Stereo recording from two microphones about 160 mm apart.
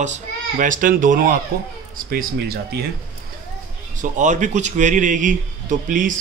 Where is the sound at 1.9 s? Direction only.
70° right (ahead or behind).